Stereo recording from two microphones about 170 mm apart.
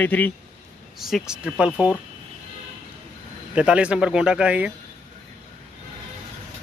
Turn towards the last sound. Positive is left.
turn(degrees=-5)  # may be behind; listen again after turning